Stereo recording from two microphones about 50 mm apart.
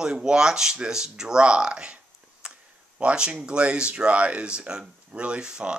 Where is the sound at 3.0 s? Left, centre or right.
Right.